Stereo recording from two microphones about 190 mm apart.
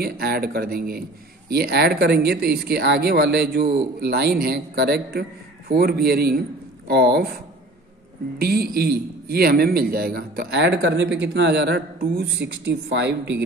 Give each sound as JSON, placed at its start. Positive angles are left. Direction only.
{"t": 0.0, "sound": "a man's voice", "side_deg": -55}